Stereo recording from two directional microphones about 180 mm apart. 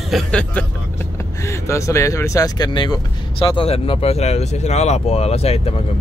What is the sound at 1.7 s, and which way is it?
Speech, 15° left (ahead or behind).